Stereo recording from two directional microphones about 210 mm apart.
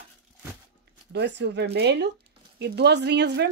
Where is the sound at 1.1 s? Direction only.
55° right (ahead or behind).